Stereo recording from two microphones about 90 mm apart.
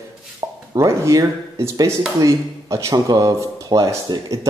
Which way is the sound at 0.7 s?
35° right (ahead or behind).